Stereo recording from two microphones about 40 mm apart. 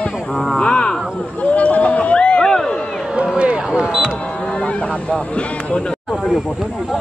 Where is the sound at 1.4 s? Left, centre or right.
Left.